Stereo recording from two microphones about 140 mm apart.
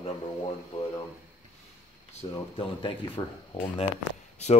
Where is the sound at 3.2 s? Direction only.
25° left (ahead or behind).